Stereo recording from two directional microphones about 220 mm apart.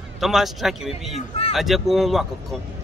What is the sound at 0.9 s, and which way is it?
Speech, 25° left (ahead or behind).